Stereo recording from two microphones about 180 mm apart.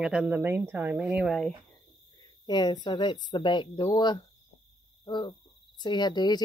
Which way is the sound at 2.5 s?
25° left (ahead or behind).